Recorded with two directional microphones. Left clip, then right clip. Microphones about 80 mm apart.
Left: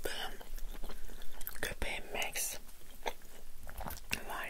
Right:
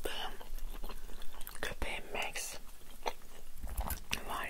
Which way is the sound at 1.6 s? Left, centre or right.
Left.